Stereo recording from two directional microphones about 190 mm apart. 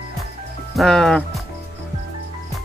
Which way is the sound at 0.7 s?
Centre (ahead or behind).